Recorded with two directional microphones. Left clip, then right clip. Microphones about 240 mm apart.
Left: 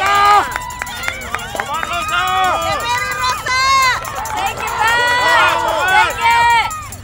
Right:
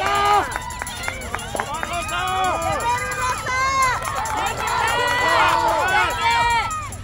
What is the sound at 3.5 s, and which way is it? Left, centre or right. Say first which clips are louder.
Run: left 7 dB; centre.